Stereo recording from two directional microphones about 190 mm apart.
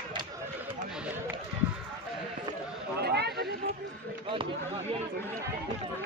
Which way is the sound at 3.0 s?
60° right (ahead or behind).